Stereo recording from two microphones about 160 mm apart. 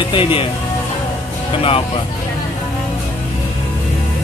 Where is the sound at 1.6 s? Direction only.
35° left (ahead or behind).